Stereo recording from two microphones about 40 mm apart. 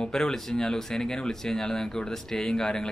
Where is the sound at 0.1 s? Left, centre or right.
Centre.